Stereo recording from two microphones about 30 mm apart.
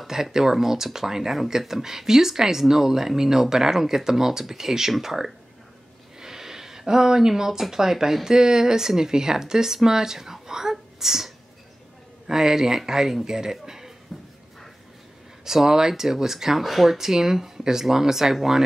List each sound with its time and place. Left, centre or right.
0.0 s speech: centre
6.1 s a sound: centre
7.7 s speech: centre
15.4 s speech: centre
16.6 s speech: centre